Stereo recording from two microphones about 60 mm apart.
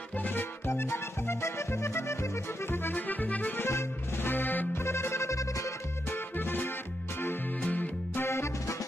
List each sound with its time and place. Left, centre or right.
0.2 s music: left
0.7 s music: left
2.7 s accordion: left
3.6 s music: left
4.8 s music: left
6.0 s music: left
8.3 s music: left